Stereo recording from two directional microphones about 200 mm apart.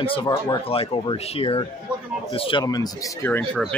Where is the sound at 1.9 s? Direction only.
5° right (ahead or behind).